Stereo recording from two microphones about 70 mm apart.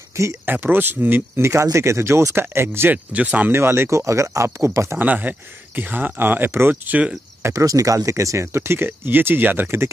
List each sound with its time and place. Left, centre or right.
0.2 s speech: right
0.5 s speech: right
2.9 s speech: centre
3.5 s speech: right
4.9 s speech: right
6.9 s speech: centre
7.4 s speech: right